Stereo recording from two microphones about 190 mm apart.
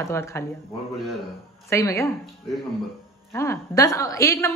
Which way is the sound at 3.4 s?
15° left (ahead or behind).